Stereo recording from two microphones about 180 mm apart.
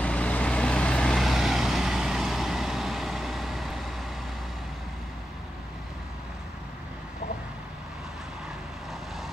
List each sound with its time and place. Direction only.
0.0 s vehicle: 5° left (ahead or behind)